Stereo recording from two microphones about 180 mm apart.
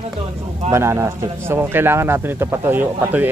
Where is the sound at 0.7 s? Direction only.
15° right (ahead or behind).